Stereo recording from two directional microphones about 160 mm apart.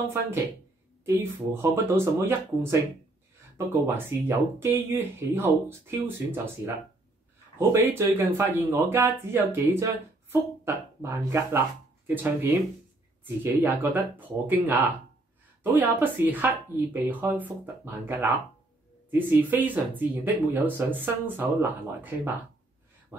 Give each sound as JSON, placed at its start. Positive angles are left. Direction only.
{"t": 1.0, "sound": "speech", "side_deg": -15}